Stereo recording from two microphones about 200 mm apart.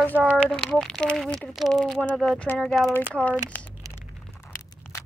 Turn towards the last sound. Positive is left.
turn(degrees=5)  # may be behind; listen again after turning